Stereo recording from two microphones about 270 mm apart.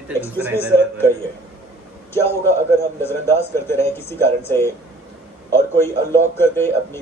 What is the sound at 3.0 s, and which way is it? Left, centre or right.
Speech, centre.